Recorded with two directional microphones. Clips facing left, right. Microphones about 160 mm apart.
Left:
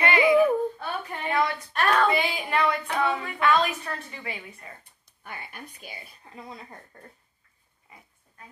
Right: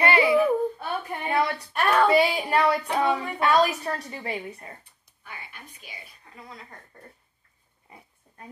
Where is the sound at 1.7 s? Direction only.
10° right (ahead or behind).